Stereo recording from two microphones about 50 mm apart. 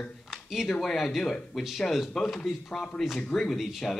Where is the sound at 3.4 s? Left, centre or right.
Centre.